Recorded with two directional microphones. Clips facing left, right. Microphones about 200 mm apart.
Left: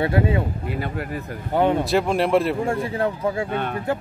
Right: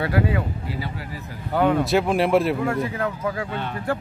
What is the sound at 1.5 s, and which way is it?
Speech, 25° left (ahead or behind).